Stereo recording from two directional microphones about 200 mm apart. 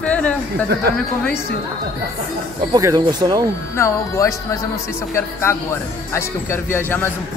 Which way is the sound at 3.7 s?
15° left (ahead or behind).